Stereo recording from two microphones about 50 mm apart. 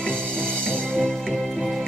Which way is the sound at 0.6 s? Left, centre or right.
Centre.